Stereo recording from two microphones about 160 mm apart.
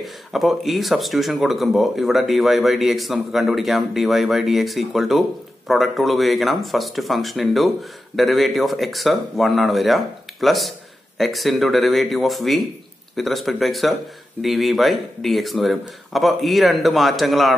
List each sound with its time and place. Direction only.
0.0 s speech: centre (ahead or behind)